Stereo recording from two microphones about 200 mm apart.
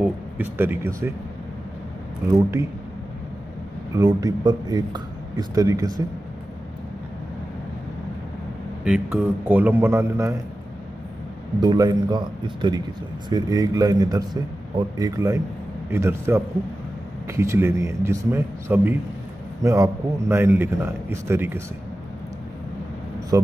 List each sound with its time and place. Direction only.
0.0 s speech: 10° right (ahead or behind)
3.9 s speech: 20° right (ahead or behind)
8.8 s a man's voice: 5° right (ahead or behind)
11.6 s a man's voice: 20° right (ahead or behind)
23.3 s a man's voice: 15° right (ahead or behind)